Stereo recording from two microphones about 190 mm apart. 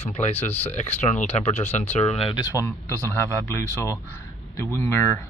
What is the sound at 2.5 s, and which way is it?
Speech, 15° left (ahead or behind).